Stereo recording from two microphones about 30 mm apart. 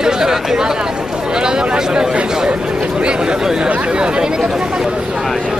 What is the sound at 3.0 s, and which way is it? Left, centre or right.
Speech, right.